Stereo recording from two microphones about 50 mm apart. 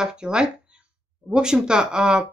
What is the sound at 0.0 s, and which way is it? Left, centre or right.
Speech, centre.